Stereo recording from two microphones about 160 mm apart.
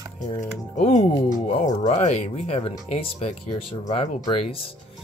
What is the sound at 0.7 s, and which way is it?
Speech, 50° left (ahead or behind).